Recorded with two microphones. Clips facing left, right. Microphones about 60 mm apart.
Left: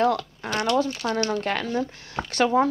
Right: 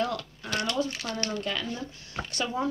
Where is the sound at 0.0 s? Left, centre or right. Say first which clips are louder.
Left 8 dB; left.